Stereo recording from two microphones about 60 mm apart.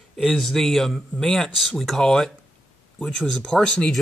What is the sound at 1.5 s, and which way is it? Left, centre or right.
Speech, centre.